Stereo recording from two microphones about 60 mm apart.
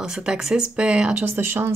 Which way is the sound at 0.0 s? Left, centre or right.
Centre.